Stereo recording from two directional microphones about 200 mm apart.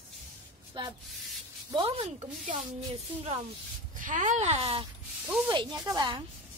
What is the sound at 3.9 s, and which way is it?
A woman's voice, 40° right (ahead or behind).